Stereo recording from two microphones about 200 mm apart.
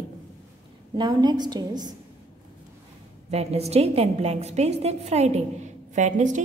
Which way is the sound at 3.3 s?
30° right (ahead or behind).